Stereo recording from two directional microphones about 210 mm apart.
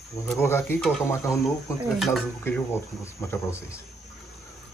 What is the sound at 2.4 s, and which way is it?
Speech, 10° left (ahead or behind).